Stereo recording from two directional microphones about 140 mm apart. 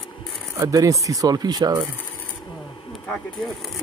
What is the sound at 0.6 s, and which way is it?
Speech, 25° right (ahead or behind).